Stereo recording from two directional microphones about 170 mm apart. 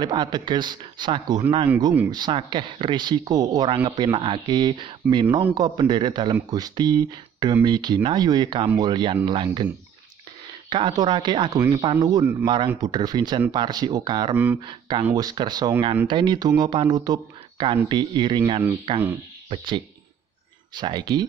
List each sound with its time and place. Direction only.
0.0 s speech: 25° right (ahead or behind)
10.7 s speech: 25° right (ahead or behind)
14.3 s speech: 10° right (ahead or behind)
14.7 s speech: 25° right (ahead or behind)